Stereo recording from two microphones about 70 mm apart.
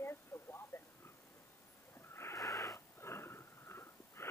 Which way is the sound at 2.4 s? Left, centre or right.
Left.